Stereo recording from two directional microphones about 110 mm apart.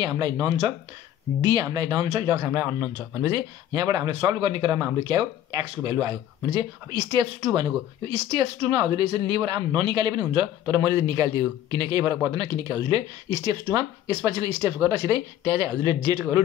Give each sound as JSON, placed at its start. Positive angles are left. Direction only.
{"t": 0.0, "sound": "speech", "side_deg": -40}
{"t": 2.3, "sound": "speech", "side_deg": -20}
{"t": 3.2, "sound": "speech", "side_deg": -35}